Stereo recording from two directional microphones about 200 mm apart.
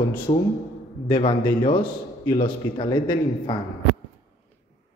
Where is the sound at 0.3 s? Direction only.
30° left (ahead or behind).